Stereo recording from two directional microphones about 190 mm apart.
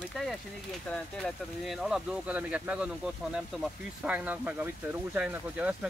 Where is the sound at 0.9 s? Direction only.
Centre (ahead or behind).